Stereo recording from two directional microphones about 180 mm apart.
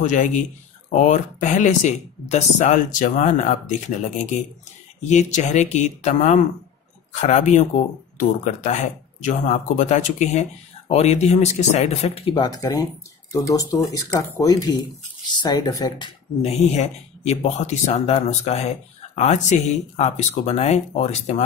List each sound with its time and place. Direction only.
0.0 s speech: 45° left (ahead or behind)
5.0 s speech: 40° left (ahead or behind); by 16.1 s 20° left (ahead or behind)
16.4 s speech: 35° left (ahead or behind)